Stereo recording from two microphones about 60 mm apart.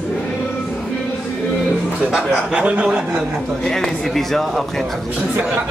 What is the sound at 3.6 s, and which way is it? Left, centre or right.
A man's voice, centre.